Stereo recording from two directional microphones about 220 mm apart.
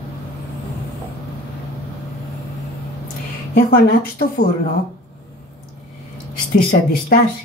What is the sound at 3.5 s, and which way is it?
Speech, 45° left (ahead or behind).